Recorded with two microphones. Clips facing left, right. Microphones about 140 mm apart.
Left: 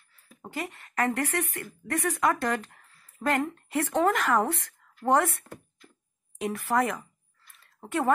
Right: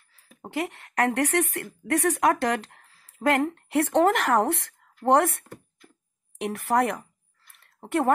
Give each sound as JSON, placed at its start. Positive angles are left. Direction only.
{"t": 0.5, "sound": "speech", "side_deg": -70}
{"t": 7.8, "sound": "speech", "side_deg": -20}